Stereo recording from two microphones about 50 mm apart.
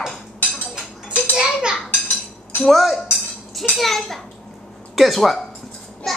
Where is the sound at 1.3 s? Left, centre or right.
Centre.